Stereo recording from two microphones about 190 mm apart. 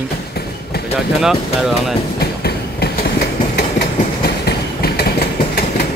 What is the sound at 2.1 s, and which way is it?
Train, 55° left (ahead or behind).